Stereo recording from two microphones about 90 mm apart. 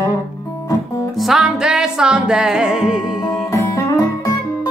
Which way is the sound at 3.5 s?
35° left (ahead or behind).